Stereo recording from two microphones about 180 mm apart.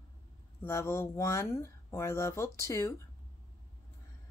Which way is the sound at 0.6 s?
15° left (ahead or behind).